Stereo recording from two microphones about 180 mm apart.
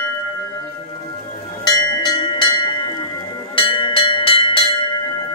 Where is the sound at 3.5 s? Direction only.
30° left (ahead or behind).